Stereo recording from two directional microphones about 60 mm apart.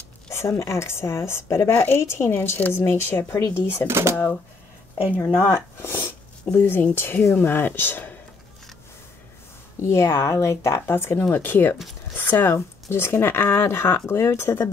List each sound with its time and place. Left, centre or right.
0.4 s speech: left
1.7 s speech: left
3.8 s speech: right
5.1 s speech: left
9.8 s speech: left